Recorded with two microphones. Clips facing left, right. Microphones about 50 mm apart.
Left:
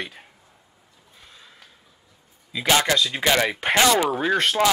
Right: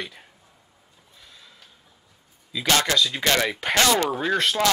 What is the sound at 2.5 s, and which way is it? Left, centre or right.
A man's voice, centre.